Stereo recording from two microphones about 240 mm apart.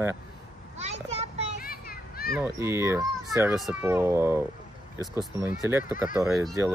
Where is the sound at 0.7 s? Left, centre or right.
Right.